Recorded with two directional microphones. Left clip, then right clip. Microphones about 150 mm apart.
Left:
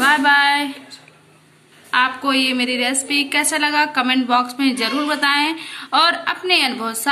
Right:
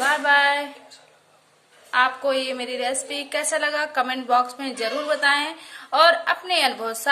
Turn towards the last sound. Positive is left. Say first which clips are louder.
# left 4 dB
turn(degrees=-35)  # may be behind; listen again after turning